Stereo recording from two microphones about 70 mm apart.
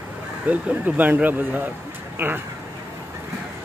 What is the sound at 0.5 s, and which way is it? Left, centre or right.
Speech, right.